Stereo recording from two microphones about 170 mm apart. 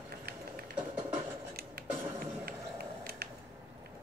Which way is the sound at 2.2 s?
65° right (ahead or behind).